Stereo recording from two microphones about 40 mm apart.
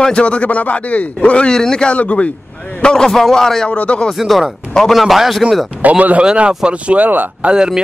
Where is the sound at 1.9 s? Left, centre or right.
Left.